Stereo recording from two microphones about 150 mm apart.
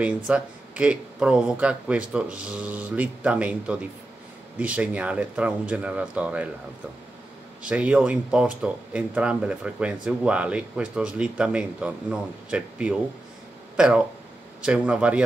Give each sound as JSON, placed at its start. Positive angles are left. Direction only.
{"t": 0.0, "sound": "speech", "side_deg": -10}
{"t": 7.6, "sound": "speech", "side_deg": -10}